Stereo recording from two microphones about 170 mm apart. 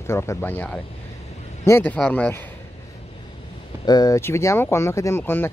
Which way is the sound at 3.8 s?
25° left (ahead or behind).